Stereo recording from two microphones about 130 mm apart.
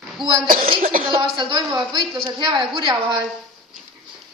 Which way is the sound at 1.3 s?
35° right (ahead or behind).